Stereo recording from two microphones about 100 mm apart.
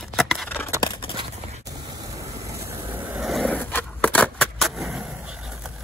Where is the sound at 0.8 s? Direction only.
55° left (ahead or behind).